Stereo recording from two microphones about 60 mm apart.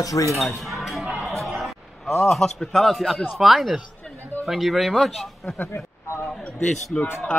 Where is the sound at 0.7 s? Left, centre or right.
Centre.